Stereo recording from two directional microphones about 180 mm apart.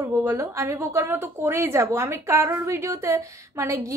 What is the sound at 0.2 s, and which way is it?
A woman's voice, 15° right (ahead or behind).